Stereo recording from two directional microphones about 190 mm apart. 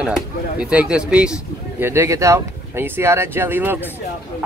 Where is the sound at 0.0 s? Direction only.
5° right (ahead or behind).